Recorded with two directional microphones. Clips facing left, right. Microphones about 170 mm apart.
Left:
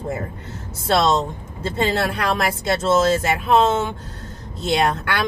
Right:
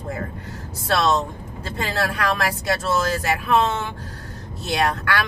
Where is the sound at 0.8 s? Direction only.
20° left (ahead or behind).